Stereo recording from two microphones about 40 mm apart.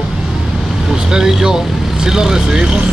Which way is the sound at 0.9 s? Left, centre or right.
Centre.